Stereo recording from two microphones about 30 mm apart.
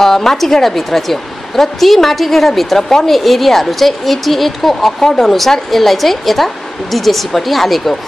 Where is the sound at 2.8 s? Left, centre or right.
Centre.